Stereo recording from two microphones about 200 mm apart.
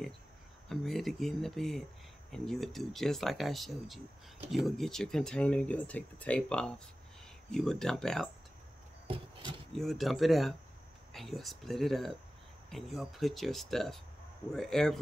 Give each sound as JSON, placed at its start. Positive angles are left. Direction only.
{"t": 0.7, "sound": "speech", "side_deg": 0}
{"t": 9.0, "sound": "a sound", "side_deg": -25}
{"t": 9.7, "sound": "speech", "side_deg": 0}